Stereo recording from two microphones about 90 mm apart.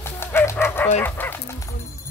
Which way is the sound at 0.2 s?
25° left (ahead or behind).